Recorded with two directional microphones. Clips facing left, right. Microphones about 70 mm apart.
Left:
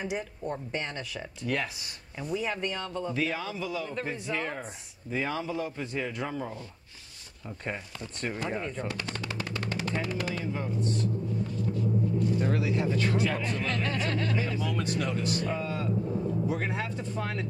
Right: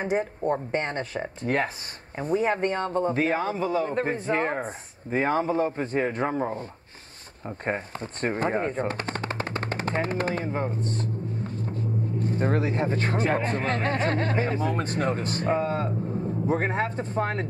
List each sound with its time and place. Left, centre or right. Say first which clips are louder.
0.0 s a man's voice: right 8 dB; right